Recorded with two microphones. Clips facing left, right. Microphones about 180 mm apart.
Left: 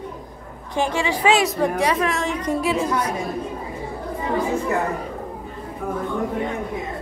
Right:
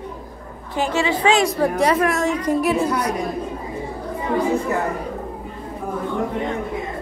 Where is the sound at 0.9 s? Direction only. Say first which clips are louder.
Right 2 dB; 15° left (ahead or behind).